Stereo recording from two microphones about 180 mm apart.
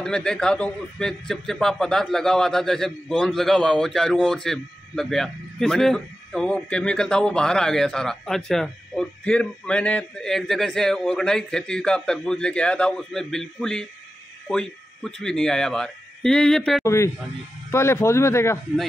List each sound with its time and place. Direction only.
0.0 s a man's voice: 5° left (ahead or behind)
16.8 s speech: 15° left (ahead or behind)